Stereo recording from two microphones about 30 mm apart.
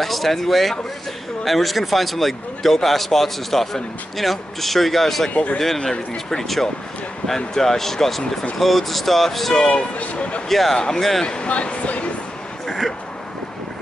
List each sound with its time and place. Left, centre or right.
0.0 s speech: centre
5.3 s speech: left
6.3 s speech: centre
9.9 s speech: left
10.5 s speech: centre
11.2 s speech: left